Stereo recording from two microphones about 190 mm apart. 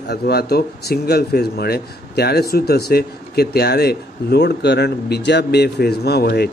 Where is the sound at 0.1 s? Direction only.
55° left (ahead or behind).